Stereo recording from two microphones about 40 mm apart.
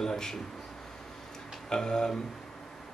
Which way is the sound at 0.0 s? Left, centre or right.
Centre.